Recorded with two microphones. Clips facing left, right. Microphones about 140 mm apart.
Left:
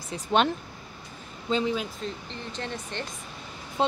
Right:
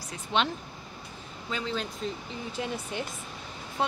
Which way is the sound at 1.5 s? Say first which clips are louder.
Left 7 dB; 20° left (ahead or behind).